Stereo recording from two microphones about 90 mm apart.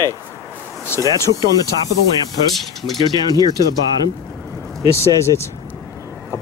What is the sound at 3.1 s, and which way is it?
Speech, 50° left (ahead or behind).